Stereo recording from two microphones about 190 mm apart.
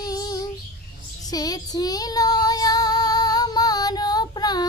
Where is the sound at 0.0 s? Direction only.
20° left (ahead or behind).